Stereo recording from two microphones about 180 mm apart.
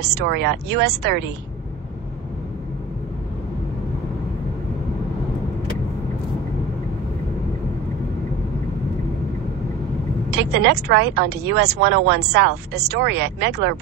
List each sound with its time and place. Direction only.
0.0 s speech: 65° right (ahead or behind)
10.3 s speech: 65° right (ahead or behind)